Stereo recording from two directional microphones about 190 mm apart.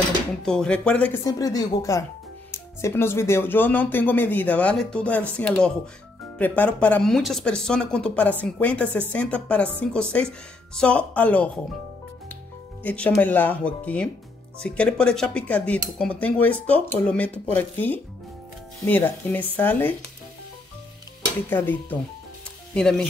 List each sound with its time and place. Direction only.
0.5 s speech: 5° left (ahead or behind)
1.2 s speech: 20° left (ahead or behind)
12.8 s speech: 5° left (ahead or behind)
21.5 s speech: 10° left (ahead or behind)